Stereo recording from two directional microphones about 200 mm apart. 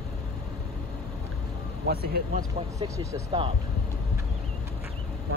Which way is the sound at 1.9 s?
50° right (ahead or behind).